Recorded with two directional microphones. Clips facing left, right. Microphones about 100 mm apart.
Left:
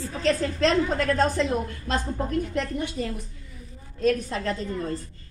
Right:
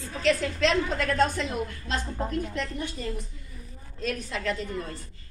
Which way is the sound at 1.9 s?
50° left (ahead or behind).